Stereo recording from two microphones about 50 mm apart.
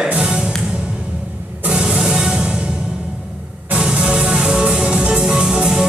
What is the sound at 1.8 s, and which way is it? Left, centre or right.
Music, centre.